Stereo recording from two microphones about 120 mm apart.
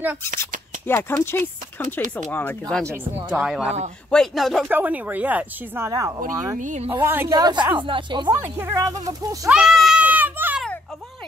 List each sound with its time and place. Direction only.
0.8 s speech: 20° left (ahead or behind)
3.3 s speech: 5° right (ahead or behind)
4.6 s speech: 15° right (ahead or behind)
5.9 s speech: 25° right (ahead or behind)
6.6 s speech: 90° right
6.9 s speech: 20° right (ahead or behind)
7.2 s speech: 35° right (ahead or behind)
8.5 s speech: 25° right (ahead or behind)
9.5 s a sound: 5° right (ahead or behind)